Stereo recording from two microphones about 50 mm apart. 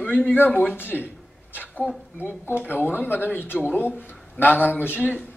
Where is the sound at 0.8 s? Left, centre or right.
Left.